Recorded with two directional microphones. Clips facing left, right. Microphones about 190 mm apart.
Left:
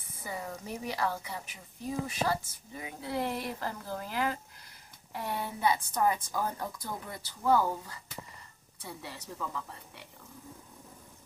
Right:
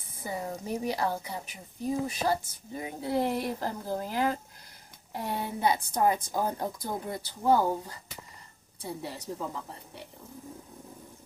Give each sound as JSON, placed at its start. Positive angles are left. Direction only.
{"t": 0.2, "sound": "speech", "side_deg": -30}